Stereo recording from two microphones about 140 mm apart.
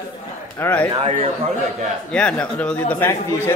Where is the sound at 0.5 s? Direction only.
15° left (ahead or behind).